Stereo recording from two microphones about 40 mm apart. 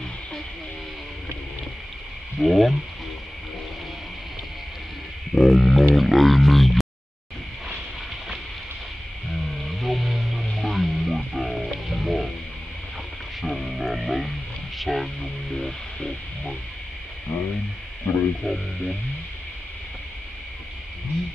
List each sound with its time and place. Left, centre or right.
2.4 s speech: centre
5.3 s a sound: centre
9.3 s music: centre
13.4 s music: centre
17.3 s a sound: left
18.1 s music: left
18.4 s music: centre